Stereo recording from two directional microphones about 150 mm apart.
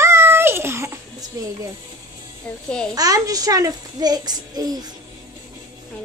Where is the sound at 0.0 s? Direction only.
15° right (ahead or behind).